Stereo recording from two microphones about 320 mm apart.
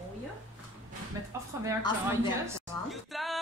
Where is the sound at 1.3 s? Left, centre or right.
Centre.